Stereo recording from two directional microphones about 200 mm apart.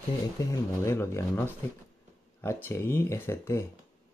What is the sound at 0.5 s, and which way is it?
Speech, 15° left (ahead or behind).